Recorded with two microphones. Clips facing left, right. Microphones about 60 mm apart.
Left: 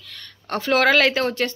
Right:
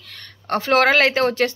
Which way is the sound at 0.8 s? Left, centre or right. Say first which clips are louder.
Right 1 dB; right.